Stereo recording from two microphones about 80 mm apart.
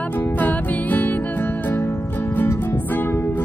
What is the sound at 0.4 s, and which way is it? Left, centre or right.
Music, left.